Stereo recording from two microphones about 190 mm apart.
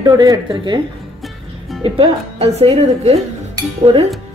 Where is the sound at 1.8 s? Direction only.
30° right (ahead or behind).